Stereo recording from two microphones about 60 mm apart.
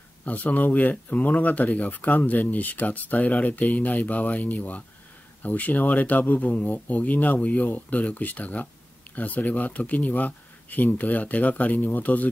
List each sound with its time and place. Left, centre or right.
0.2 s speech: left